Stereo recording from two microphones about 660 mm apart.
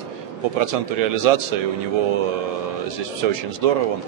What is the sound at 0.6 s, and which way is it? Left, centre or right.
Speech, right.